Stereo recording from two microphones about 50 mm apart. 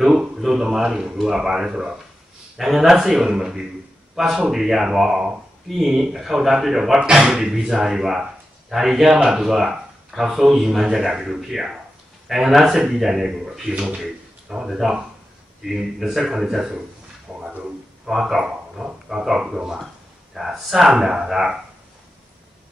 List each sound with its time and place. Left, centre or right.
0.0 s a man's voice: centre
3.1 s a man's voice: centre
7.0 s a man's voice: centre
17.3 s a sound: centre
18.0 s a man's voice: centre